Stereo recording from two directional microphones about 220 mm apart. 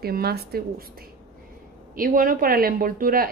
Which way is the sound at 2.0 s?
40° right (ahead or behind).